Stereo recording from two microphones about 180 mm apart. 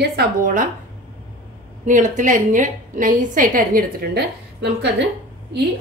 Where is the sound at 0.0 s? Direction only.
55° right (ahead or behind).